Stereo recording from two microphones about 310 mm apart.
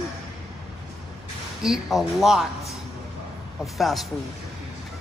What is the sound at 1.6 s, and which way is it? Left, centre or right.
Speech, centre.